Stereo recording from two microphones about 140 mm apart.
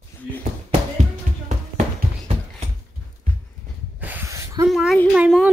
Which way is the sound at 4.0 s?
15° right (ahead or behind).